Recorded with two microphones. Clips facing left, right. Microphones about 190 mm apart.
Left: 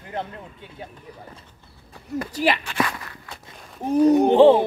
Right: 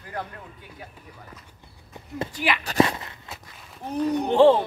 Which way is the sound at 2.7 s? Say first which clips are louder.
Right 5 dB; 25° right (ahead or behind).